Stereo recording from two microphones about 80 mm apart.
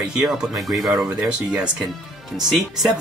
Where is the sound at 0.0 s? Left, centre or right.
Centre.